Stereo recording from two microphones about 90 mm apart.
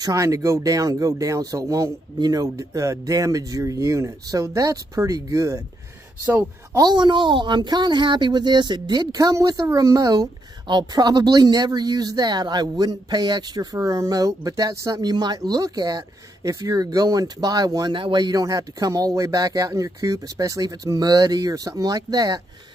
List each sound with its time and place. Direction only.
0.0 s speech: 40° right (ahead or behind)
6.8 s a woman's voice: 55° right (ahead or behind)
13.7 s a woman's voice: 35° right (ahead or behind)
17.9 s a woman's voice: 60° right (ahead or behind); by 22.4 s 45° right (ahead or behind)